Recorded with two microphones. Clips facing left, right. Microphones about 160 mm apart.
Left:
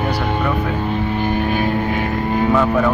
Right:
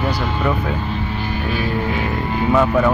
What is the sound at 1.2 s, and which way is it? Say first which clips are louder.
Vehicle: left 4 dB; 50° left (ahead or behind).